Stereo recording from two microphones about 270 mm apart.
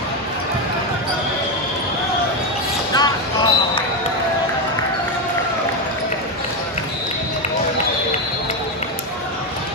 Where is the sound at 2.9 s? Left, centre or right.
Centre.